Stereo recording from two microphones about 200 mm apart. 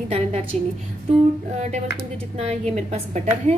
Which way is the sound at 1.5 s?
35° right (ahead or behind).